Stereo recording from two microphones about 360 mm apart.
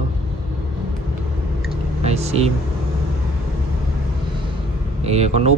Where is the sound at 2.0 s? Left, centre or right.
Centre.